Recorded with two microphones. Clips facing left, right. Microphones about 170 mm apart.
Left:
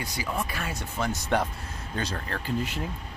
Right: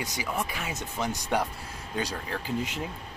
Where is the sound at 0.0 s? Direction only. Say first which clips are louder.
Even; 20° right (ahead or behind).